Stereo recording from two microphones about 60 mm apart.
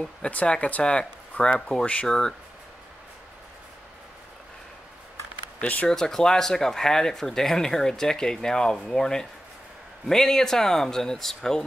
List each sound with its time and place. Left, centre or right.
0.3 s speech: left
5.6 s speech: left
5.9 s speech: centre